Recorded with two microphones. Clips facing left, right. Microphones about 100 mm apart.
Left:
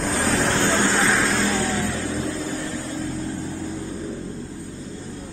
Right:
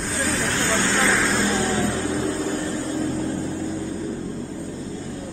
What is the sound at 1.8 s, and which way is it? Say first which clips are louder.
Vehicle: right 3 dB; 30° right (ahead or behind).